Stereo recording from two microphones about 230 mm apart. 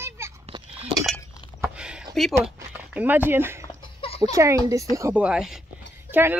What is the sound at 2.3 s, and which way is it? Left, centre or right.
Speech, centre.